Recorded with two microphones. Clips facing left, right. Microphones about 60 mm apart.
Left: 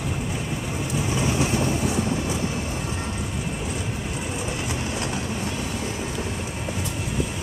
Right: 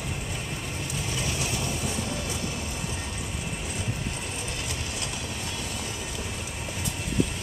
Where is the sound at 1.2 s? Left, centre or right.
Left.